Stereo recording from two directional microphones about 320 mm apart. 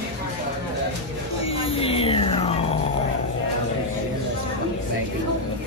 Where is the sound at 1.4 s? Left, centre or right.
Centre.